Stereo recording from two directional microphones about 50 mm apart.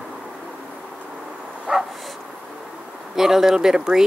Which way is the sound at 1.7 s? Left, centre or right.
Centre.